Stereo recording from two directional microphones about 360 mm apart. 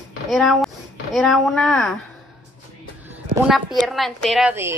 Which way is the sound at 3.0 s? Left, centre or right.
Centre.